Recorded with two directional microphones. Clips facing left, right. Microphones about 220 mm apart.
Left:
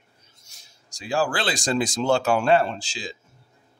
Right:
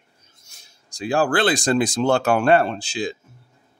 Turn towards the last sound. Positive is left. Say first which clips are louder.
# right 7 dB
turn(degrees=-60)  # may be behind; listen again after turning